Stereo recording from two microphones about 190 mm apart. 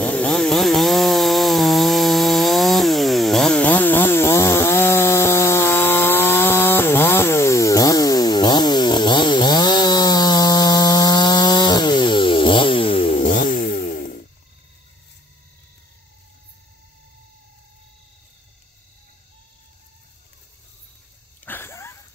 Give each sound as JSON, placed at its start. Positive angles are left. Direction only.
{"t": 0.0, "sound": "chainsaw", "side_deg": 5}
{"t": 13.3, "sound": "chainsaw", "side_deg": 45}
{"t": 21.5, "sound": "sniff", "side_deg": 10}